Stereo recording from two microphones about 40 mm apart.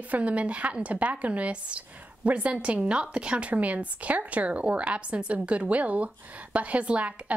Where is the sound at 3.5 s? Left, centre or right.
Right.